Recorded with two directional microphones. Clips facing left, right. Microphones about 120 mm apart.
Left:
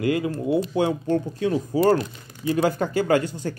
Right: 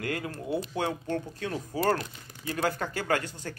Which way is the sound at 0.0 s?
10° left (ahead or behind).